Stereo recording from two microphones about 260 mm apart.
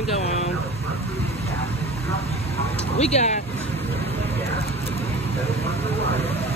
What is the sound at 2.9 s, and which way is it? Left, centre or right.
Speech, left.